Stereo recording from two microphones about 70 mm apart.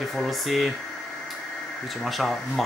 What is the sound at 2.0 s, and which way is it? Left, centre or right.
Speech, centre.